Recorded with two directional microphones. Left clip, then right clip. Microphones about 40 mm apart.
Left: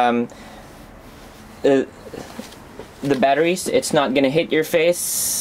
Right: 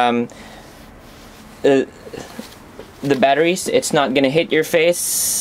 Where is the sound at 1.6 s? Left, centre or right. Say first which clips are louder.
Right 2 dB; right.